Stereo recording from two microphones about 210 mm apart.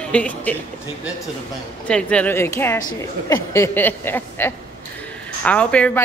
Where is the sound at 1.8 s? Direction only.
5° left (ahead or behind).